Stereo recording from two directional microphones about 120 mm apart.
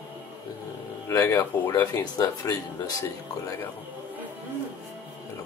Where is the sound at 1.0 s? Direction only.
25° left (ahead or behind).